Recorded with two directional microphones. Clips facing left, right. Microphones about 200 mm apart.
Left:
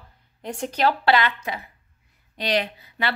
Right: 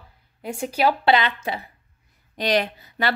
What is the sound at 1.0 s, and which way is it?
Speech, 20° right (ahead or behind).